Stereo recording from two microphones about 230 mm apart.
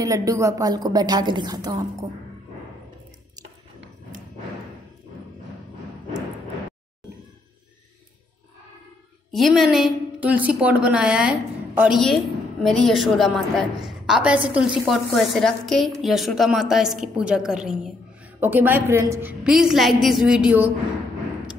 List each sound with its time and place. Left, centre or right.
0.0 s a woman's voice: centre
9.3 s a woman's voice: centre